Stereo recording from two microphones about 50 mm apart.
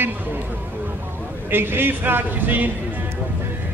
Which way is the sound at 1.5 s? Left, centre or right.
Right.